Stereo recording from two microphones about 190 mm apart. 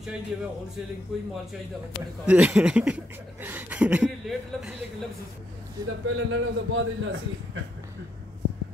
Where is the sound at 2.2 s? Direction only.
5° right (ahead or behind).